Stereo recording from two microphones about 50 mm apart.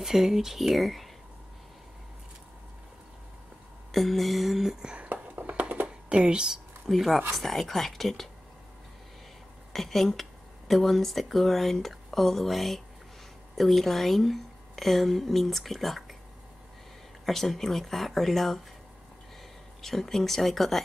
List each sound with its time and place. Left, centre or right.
0.0 s speech: centre
3.9 s speech: centre
4.9 s music: right
5.9 s speech: right
6.9 s speech: centre
9.7 s speech: centre
17.3 s speech: centre
19.8 s speech: centre